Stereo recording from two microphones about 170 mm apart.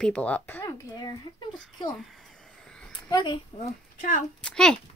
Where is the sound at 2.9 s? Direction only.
25° left (ahead or behind).